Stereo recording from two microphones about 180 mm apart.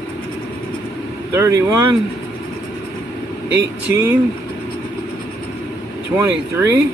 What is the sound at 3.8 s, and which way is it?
Speech, 10° right (ahead or behind).